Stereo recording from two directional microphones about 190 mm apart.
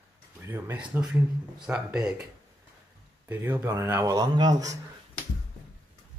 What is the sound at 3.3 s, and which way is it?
Speech, 10° right (ahead or behind).